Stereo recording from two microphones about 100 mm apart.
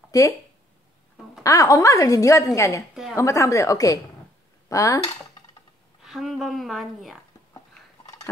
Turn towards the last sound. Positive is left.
turn(degrees=0)  # may be behind; listen again after turning